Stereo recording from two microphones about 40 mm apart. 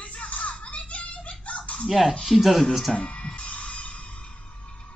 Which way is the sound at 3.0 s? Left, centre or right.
Left.